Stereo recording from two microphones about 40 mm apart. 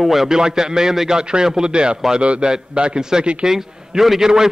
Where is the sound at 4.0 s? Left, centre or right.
Centre.